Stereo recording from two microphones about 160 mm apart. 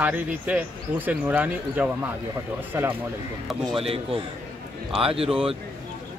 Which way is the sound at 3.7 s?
35° right (ahead or behind).